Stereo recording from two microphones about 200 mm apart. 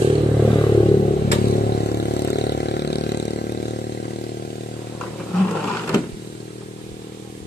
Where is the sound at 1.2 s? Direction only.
55° left (ahead or behind).